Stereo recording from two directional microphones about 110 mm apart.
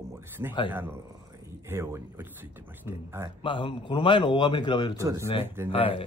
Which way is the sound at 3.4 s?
50° left (ahead or behind).